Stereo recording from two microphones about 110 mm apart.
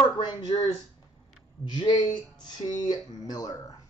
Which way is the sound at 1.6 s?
40° left (ahead or behind).